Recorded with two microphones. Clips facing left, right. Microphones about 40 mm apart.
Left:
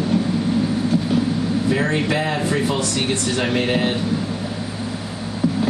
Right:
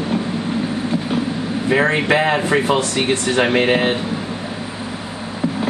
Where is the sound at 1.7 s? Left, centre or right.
Right.